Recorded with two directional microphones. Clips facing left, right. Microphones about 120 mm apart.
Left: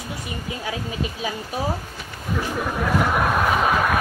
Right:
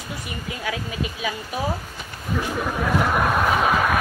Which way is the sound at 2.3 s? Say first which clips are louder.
Even; centre (ahead or behind).